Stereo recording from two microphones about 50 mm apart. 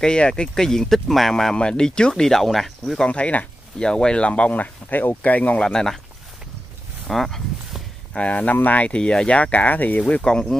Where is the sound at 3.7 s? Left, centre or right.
Centre; by 5.6 s left.